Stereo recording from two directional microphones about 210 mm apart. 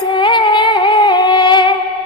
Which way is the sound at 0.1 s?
20° left (ahead or behind).